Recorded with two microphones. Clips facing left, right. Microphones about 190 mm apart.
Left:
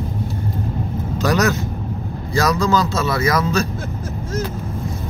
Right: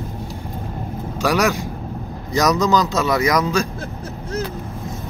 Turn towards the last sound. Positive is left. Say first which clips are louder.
# even
turn(degrees=-15)  # may be behind; listen again after turning